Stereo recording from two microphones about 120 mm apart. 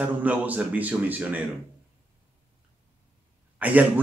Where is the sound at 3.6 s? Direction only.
10° right (ahead or behind).